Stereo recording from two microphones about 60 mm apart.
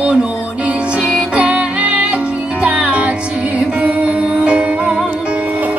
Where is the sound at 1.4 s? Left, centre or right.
Right.